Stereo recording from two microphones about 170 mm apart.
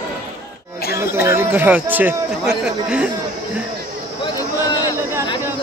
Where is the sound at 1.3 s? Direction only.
15° right (ahead or behind).